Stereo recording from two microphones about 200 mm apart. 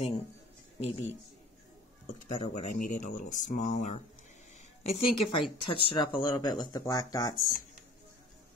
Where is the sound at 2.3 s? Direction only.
25° left (ahead or behind).